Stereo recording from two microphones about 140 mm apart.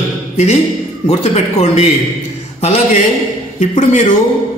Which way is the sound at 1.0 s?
50° left (ahead or behind).